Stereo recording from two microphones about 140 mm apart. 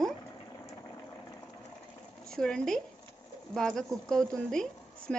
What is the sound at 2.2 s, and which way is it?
A woman's voice, 5° left (ahead or behind).